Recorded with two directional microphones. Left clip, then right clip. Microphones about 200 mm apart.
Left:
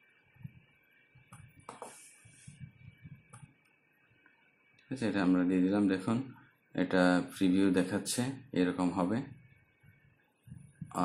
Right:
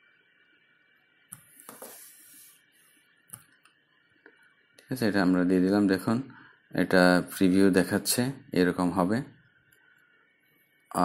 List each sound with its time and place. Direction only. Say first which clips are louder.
4.8 s speech: right 6 dB; 25° right (ahead or behind)